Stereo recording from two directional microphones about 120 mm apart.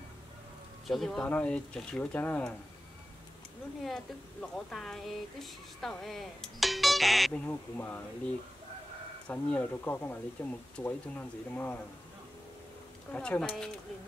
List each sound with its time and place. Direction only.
0.8 s speech: centre (ahead or behind)
3.8 s speech: 5° left (ahead or behind)
7.3 s speech: 15° left (ahead or behind)
13.1 s speech: 10° left (ahead or behind)